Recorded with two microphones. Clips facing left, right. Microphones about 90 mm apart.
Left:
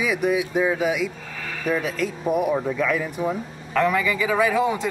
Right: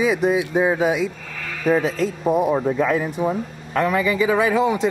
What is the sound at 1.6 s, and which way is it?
Speech, 30° right (ahead or behind).